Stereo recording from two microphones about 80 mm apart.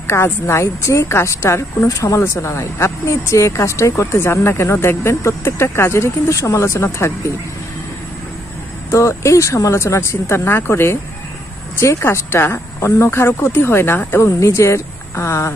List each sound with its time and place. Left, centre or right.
0.0 s a woman's voice: left
8.9 s a woman's voice: left